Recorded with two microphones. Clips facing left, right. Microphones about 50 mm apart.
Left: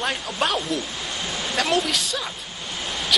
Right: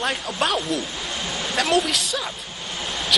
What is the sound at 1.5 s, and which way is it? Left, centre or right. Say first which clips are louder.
Speech: right 2 dB; centre.